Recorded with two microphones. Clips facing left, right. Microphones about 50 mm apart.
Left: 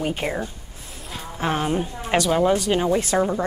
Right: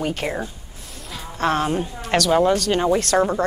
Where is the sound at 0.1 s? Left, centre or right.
Centre.